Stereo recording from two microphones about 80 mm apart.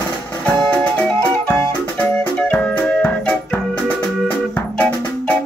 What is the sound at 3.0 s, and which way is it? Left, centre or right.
Music, centre.